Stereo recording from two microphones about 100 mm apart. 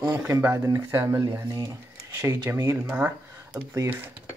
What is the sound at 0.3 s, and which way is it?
Speech, 25° right (ahead or behind).